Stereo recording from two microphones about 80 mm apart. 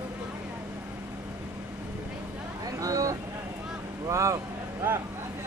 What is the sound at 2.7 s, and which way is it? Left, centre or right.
Vehicle, right.